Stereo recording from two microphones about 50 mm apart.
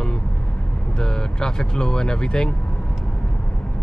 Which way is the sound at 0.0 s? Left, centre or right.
Centre.